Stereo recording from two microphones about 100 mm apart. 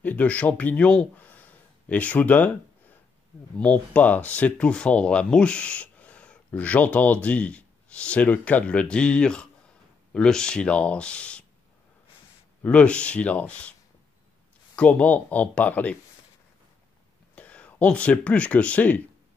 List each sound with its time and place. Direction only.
0.0 s speech: 15° left (ahead or behind)
3.5 s speech: 10° left (ahead or behind)
12.6 s speech: 10° left (ahead or behind)
14.8 s speech: 15° left (ahead or behind)
17.4 s speech: 15° left (ahead or behind)